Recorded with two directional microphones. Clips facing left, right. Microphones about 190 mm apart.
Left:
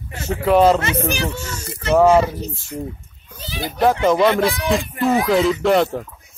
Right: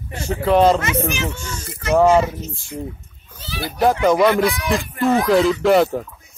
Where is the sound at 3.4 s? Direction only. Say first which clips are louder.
Left 1 dB; 15° left (ahead or behind).